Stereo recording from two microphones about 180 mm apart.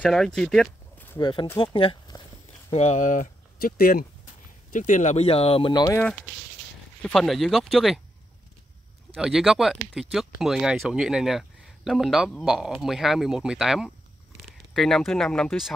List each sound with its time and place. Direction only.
0.0 s speech: centre (ahead or behind)
1.2 s speech: 25° left (ahead or behind)
2.7 s speech: 40° left (ahead or behind); by 5.9 s 25° left (ahead or behind)
7.0 s speech: 5° left (ahead or behind)
9.1 s speech: centre (ahead or behind)